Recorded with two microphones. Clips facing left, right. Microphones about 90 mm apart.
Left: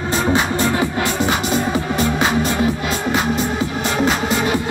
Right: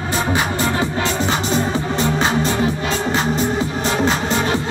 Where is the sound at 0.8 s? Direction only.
25° right (ahead or behind).